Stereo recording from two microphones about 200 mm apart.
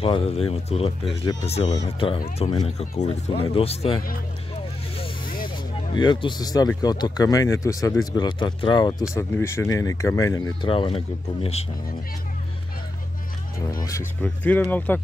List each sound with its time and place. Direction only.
0.0 s speech: 30° left (ahead or behind)
5.9 s speech: 20° left (ahead or behind)
10.7 s speech: 25° left (ahead or behind)
13.8 s speech: 10° left (ahead or behind)